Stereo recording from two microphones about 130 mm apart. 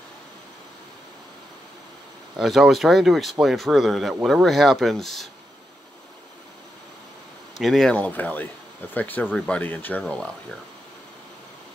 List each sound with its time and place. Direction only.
2.3 s speech: centre (ahead or behind)
7.5 s speech: centre (ahead or behind)